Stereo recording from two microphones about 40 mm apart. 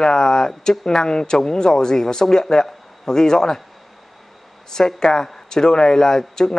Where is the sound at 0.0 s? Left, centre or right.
Centre.